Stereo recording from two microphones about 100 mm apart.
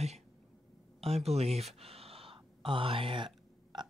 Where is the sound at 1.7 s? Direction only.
80° right; by 3.3 s 60° right (ahead or behind).